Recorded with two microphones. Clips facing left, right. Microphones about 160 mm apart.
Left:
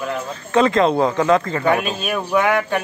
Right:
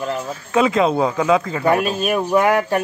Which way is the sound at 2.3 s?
35° right (ahead or behind).